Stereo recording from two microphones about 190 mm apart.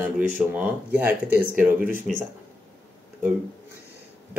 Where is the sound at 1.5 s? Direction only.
45° right (ahead or behind).